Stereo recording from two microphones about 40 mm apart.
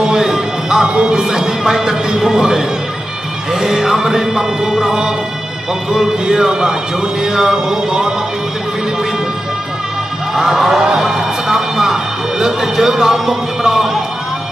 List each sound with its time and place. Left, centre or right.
0.0 s speech: centre
4.8 s music: centre
5.9 s speech: centre
10.3 s speech: centre